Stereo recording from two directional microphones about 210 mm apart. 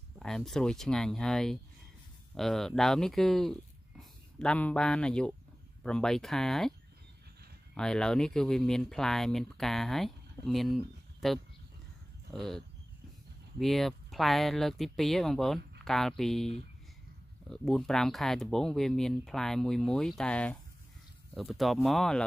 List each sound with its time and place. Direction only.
0.2 s speech: centre (ahead or behind)
7.7 s speech: 5° left (ahead or behind)
17.5 s speech: centre (ahead or behind)